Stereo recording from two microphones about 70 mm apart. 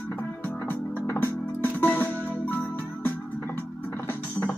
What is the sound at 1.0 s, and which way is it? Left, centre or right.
Music, left.